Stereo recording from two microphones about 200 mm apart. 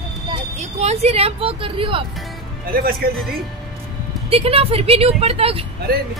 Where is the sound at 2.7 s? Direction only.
45° right (ahead or behind).